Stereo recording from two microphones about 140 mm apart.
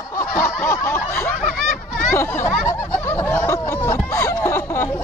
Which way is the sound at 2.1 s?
15° left (ahead or behind).